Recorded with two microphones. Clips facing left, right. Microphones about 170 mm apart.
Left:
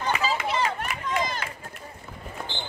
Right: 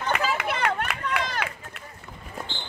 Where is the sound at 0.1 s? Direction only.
60° right (ahead or behind).